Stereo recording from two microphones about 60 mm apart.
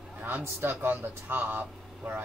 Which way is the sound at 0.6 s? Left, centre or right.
Right.